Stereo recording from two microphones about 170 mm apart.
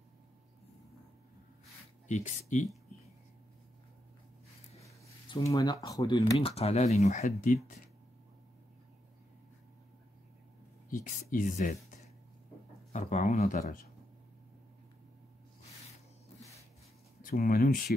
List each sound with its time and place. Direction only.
2.0 s speech: 45° left (ahead or behind)
5.4 s speech: 20° left (ahead or behind)
6.4 s speech: 35° left (ahead or behind)
10.9 s speech: 50° left (ahead or behind)
12.9 s speech: 45° left (ahead or behind)
17.2 s speech: 55° left (ahead or behind)